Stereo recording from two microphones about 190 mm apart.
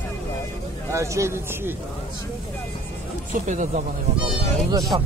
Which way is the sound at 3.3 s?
40° right (ahead or behind).